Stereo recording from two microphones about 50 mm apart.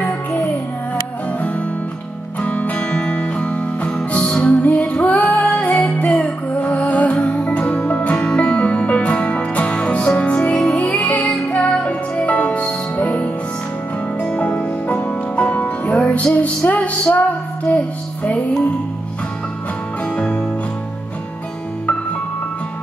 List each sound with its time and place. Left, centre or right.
0.0 s music: left
2.4 s music: left
2.9 s music: centre; by 13.3 s left
14.2 s music: centre
20.2 s music: centre